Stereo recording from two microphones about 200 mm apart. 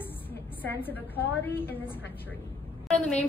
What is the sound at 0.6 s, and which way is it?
A woman's voice, 10° left (ahead or behind).